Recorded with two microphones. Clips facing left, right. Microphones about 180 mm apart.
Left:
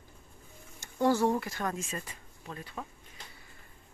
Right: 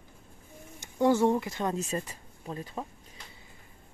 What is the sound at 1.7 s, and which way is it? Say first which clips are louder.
Speech: right 6 dB; 35° right (ahead or behind).